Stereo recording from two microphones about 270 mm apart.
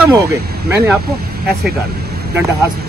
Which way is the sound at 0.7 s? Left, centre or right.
Centre.